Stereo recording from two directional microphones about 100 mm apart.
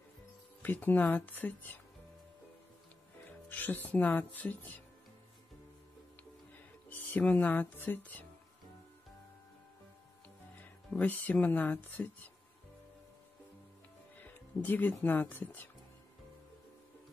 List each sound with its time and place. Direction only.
0.6 s speech: 20° left (ahead or behind)
3.4 s speech: 20° left (ahead or behind)
6.9 s speech: 15° left (ahead or behind)
10.9 s speech: 15° left (ahead or behind)
14.2 s music: 20° left (ahead or behind)
15.0 s speech: 20° left (ahead or behind)